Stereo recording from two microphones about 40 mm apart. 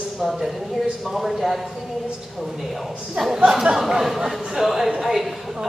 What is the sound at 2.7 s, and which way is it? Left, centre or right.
Speech, centre.